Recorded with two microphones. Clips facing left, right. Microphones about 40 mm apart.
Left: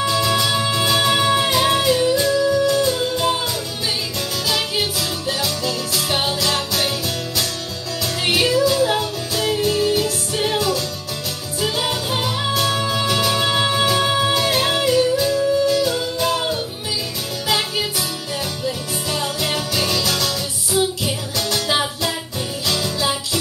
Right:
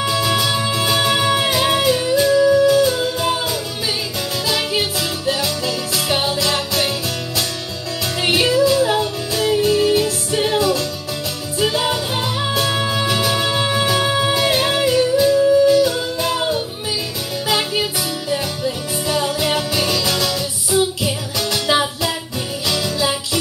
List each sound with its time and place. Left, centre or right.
0.0 s music: centre
4.5 s music: right
8.3 s yodeling: right
8.6 s music: right
12.2 s music: centre
13.4 s music: centre
19.2 s music: centre